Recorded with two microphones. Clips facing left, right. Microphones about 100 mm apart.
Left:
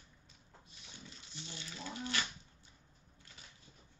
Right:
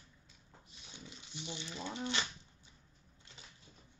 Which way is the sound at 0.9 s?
15° right (ahead or behind).